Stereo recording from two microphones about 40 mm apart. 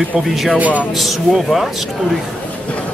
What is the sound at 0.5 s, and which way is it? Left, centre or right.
Speech, right.